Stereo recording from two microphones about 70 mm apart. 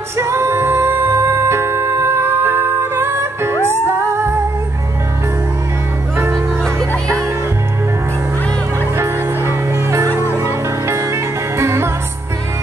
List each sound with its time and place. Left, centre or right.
0.2 s music: right
6.1 s music: right
8.9 s music: right